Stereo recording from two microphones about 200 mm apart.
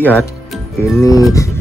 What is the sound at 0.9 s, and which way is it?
Speech, 15° left (ahead or behind).